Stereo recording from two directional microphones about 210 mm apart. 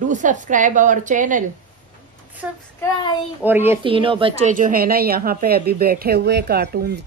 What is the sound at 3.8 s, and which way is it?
A woman's voice, 25° right (ahead or behind).